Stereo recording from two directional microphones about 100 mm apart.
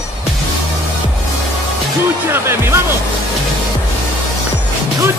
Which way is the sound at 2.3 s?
25° right (ahead or behind).